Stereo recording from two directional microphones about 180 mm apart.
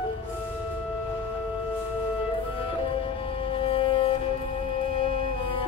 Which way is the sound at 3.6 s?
30° left (ahead or behind).